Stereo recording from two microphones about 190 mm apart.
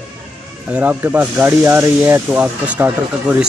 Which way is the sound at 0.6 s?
5° right (ahead or behind).